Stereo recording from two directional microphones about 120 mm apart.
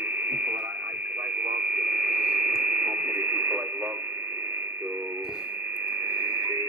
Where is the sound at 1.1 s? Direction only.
20° right (ahead or behind).